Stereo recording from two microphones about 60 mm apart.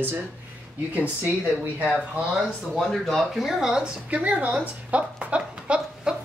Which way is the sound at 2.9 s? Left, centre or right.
Centre.